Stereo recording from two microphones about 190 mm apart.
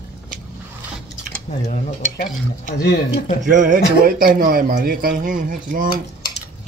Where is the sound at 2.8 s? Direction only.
55° left (ahead or behind).